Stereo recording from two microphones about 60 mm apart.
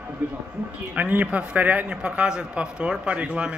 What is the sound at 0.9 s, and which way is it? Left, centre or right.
Speech, right.